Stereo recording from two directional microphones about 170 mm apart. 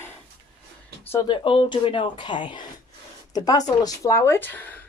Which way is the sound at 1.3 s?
30° left (ahead or behind).